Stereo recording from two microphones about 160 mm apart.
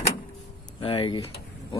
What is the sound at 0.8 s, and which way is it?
Speech, 30° left (ahead or behind).